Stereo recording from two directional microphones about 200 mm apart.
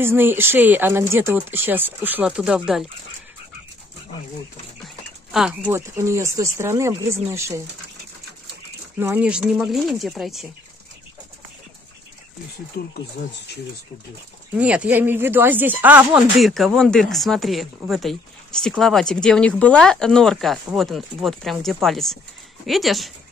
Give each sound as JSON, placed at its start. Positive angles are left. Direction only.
{"t": 0.0, "sound": "speech", "side_deg": -10}
{"t": 4.8, "sound": "speech", "side_deg": -5}
{"t": 9.0, "sound": "speech", "side_deg": -10}
{"t": 12.7, "sound": "speech", "side_deg": 55}
{"t": 14.5, "sound": "speech", "side_deg": -5}